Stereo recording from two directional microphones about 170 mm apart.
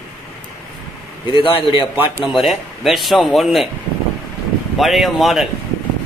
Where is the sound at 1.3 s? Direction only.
30° left (ahead or behind).